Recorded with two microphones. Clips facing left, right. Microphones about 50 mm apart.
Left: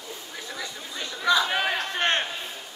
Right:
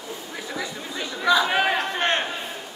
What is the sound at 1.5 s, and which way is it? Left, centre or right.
Crowd, centre.